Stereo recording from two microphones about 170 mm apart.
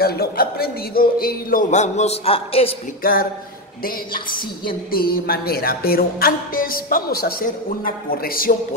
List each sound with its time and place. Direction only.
0.0 s a man's voice: 65° left (ahead or behind); by 2.7 s 35° left (ahead or behind)
3.0 s speech: 60° left (ahead or behind)